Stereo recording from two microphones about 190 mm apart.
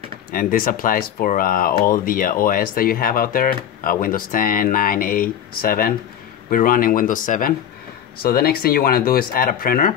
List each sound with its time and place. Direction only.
0.3 s speech: 50° left (ahead or behind)